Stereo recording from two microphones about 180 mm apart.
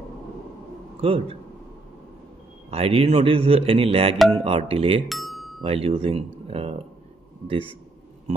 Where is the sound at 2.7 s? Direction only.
35° right (ahead or behind).